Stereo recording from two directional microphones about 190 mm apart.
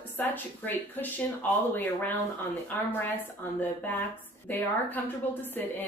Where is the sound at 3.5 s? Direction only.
10° left (ahead or behind).